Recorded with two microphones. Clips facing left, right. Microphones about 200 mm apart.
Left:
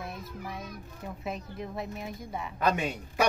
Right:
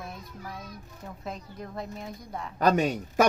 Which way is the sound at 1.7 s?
5° left (ahead or behind).